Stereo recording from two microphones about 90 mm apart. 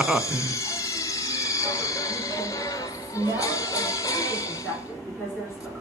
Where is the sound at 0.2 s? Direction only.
35° left (ahead or behind).